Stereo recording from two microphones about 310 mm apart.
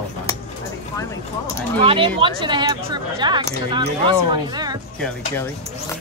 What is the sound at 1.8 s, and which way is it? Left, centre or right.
Speech, centre.